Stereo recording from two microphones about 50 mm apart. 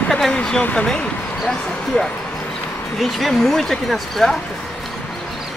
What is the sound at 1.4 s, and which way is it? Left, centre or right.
Speech, centre.